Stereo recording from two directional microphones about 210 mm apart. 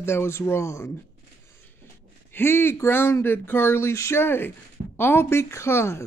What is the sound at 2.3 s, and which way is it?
A man's voice, 10° left (ahead or behind).